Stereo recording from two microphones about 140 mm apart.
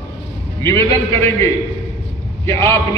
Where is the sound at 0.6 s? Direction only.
20° left (ahead or behind).